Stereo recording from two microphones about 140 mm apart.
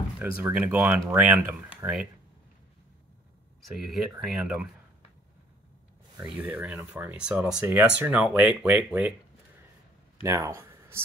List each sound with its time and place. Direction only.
0.2 s speech: 15° right (ahead or behind)
3.6 s speech: centre (ahead or behind)
6.2 s speech: 10° right (ahead or behind)
10.2 s speech: 20° right (ahead or behind)